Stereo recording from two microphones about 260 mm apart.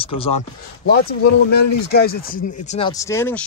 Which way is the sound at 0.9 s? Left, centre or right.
Left.